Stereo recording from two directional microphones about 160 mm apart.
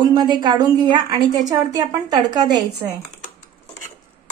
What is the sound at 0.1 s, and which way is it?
A woman's voice, 25° right (ahead or behind).